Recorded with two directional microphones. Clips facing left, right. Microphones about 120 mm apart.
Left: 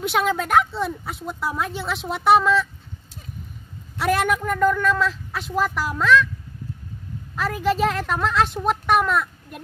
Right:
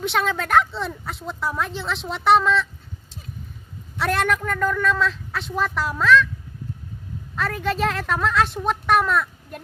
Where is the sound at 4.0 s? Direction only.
5° left (ahead or behind).